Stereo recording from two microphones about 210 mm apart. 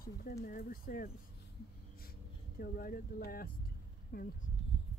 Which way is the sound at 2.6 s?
45° left (ahead or behind).